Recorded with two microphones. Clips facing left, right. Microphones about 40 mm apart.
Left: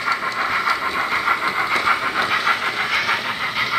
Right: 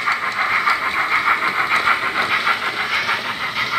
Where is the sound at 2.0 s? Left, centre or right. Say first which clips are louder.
Right 1 dB; centre.